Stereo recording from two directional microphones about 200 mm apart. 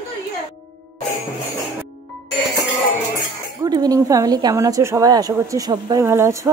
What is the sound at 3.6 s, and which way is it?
A woman's voice, 20° right (ahead or behind).